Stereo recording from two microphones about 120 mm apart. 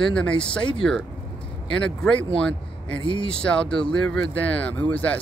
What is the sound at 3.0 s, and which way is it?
Speech, 45° left (ahead or behind).